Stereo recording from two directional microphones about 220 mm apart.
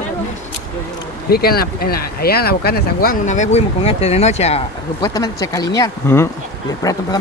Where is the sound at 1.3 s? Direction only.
45° left (ahead or behind); by 5.1 s 25° left (ahead or behind).